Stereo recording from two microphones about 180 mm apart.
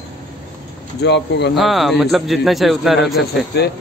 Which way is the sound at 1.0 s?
70° left (ahead or behind).